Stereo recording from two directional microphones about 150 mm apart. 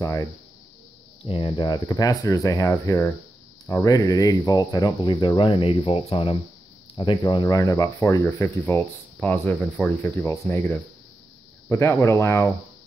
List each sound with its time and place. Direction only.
0.0 s speech: 20° left (ahead or behind)
1.2 s speech: 35° left (ahead or behind); by 12.5 s 20° left (ahead or behind)